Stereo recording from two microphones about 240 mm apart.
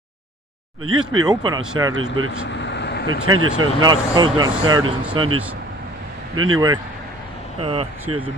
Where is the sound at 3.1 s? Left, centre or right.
Right.